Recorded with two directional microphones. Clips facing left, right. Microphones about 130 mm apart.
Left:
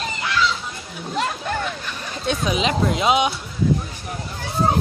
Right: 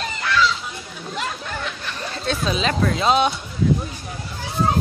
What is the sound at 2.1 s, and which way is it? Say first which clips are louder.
Speech: left 1 dB; 15° left (ahead or behind).